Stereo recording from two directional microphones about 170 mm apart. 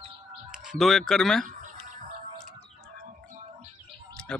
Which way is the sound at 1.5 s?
50° right (ahead or behind).